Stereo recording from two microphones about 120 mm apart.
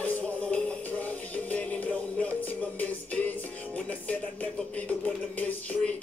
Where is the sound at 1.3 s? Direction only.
10° left (ahead or behind).